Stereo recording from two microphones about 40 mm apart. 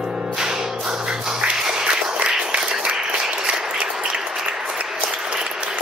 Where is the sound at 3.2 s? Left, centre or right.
Right.